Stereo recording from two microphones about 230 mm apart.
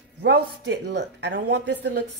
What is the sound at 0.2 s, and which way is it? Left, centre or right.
Speech, right.